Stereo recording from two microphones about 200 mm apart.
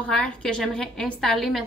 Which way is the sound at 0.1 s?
5° left (ahead or behind).